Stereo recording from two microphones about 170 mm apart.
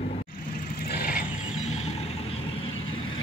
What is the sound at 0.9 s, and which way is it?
Vehicle, 65° left (ahead or behind).